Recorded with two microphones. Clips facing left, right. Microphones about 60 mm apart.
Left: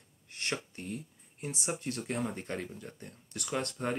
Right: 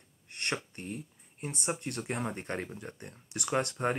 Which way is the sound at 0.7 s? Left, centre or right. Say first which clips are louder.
Even; centre.